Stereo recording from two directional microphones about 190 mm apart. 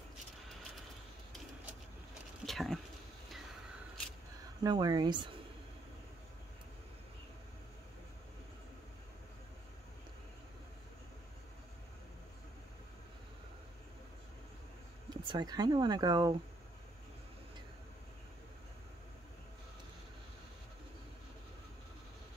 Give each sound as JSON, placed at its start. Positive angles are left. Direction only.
{"t": 2.4, "sound": "a sound", "side_deg": 0}
{"t": 4.6, "sound": "speech", "side_deg": -20}
{"t": 15.0, "sound": "speech", "side_deg": -20}